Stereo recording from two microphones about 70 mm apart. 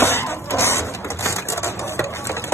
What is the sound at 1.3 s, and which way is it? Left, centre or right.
Typewriter, left.